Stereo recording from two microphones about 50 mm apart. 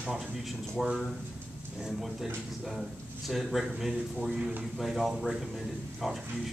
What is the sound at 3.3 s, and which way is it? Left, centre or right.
A man's voice, centre.